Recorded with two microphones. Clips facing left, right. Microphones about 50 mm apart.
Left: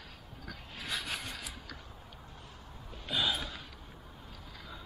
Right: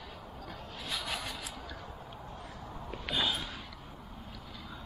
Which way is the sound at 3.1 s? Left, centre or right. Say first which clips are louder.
Even; centre.